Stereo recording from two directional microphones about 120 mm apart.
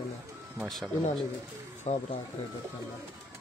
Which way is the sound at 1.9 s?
65° left (ahead or behind).